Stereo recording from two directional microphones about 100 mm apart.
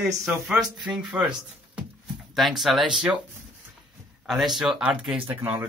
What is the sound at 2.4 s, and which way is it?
Speech, centre (ahead or behind).